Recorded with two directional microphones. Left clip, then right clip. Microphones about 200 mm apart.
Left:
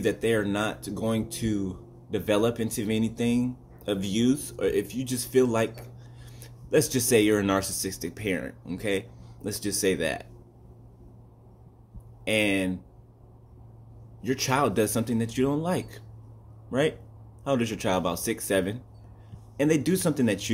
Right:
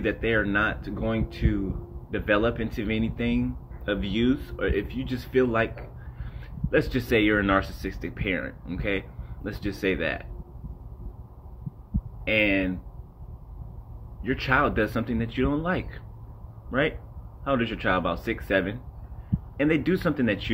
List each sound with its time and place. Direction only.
0.0 s speech: 20° left (ahead or behind)
12.3 s speech: 25° left (ahead or behind)
14.2 s speech: 25° left (ahead or behind)
17.4 s speech: 25° left (ahead or behind)